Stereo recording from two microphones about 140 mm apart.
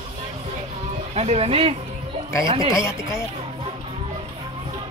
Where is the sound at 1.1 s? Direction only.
50° right (ahead or behind).